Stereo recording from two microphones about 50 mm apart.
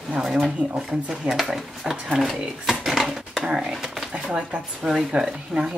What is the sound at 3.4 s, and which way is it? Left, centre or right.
Speech, centre.